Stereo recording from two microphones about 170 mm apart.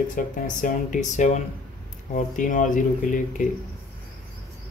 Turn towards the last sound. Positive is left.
turn(degrees=50)  # may be behind; listen again after turning